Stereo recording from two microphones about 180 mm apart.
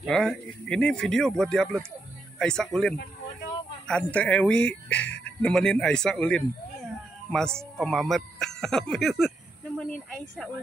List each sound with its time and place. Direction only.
0.0 s speech: centre (ahead or behind)